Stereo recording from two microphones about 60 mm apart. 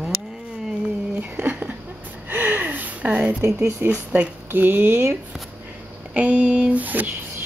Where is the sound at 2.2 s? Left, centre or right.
Right.